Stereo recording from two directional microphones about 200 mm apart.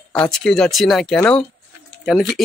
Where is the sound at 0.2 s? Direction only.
5° left (ahead or behind).